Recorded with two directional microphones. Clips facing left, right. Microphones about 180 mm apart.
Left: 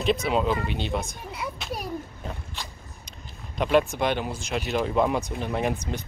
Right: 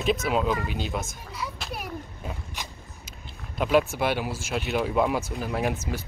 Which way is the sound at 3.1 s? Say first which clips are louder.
Right 1 dB; 5° right (ahead or behind).